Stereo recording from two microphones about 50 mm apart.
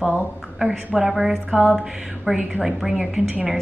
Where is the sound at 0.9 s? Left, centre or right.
Centre.